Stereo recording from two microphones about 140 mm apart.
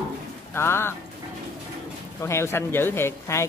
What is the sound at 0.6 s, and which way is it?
Speech, 15° left (ahead or behind).